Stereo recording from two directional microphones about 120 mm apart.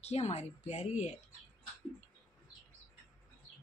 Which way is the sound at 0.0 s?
60° left (ahead or behind).